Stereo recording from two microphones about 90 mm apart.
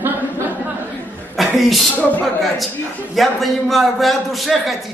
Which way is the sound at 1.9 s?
15° left (ahead or behind).